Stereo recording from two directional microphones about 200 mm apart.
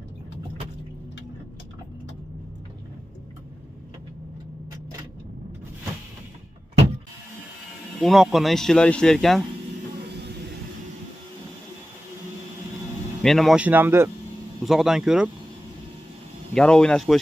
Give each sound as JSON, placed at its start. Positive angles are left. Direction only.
{"t": 8.0, "sound": "speech", "side_deg": 0}
{"t": 9.9, "sound": "a sound", "side_deg": -55}
{"t": 13.2, "sound": "speech", "side_deg": 0}
{"t": 14.6, "sound": "speech", "side_deg": 0}
{"t": 16.5, "sound": "speech", "side_deg": 5}